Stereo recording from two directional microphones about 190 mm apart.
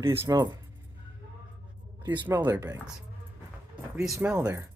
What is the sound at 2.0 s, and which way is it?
Speech, 25° right (ahead or behind).